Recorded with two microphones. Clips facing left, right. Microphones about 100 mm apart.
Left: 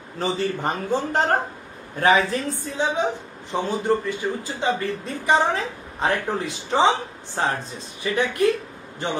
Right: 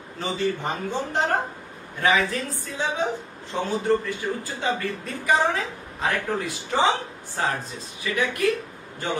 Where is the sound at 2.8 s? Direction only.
20° left (ahead or behind).